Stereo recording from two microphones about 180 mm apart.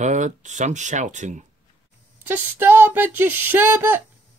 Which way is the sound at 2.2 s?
10° right (ahead or behind).